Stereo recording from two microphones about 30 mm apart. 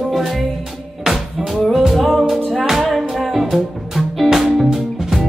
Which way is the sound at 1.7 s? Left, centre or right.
Centre.